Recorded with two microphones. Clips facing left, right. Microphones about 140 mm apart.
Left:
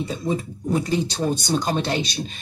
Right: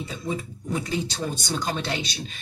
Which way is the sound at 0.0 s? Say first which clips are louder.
Left 5 dB; 35° left (ahead or behind).